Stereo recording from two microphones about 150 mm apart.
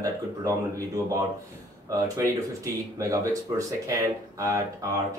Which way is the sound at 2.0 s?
20° right (ahead or behind).